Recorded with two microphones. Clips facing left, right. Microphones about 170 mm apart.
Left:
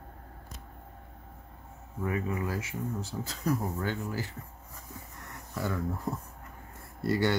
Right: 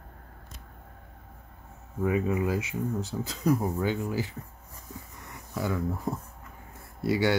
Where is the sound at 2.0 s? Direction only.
20° right (ahead or behind).